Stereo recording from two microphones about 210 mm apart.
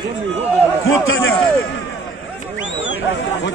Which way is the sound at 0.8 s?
70° left (ahead or behind).